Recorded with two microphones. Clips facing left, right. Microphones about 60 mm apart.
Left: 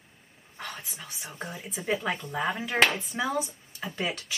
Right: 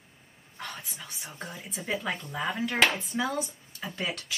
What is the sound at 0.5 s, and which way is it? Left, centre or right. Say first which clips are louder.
Speech: left 1 dB; centre.